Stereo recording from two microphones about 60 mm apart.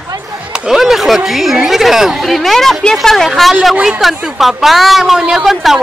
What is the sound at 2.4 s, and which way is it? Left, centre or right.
A woman's voice, centre.